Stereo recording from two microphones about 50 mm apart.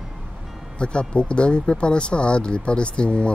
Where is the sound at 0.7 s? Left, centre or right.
Left.